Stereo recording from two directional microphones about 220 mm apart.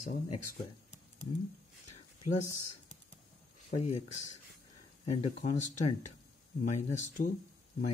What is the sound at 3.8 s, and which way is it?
Speech, 30° left (ahead or behind).